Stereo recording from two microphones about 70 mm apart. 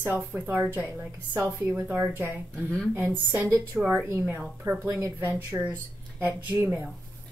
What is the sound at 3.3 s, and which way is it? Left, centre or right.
A woman's voice, right.